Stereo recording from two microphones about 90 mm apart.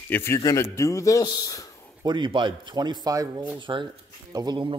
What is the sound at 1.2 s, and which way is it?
Speech, 50° left (ahead or behind).